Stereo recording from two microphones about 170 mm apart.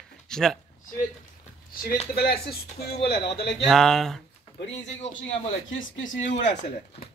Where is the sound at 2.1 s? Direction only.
65° left (ahead or behind).